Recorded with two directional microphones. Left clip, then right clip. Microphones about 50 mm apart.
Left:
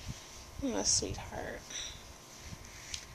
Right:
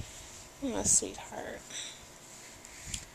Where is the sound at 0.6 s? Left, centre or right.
Centre.